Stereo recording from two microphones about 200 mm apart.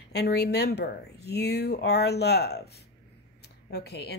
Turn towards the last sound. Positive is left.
turn(degrees=55)  # may be behind; listen again after turning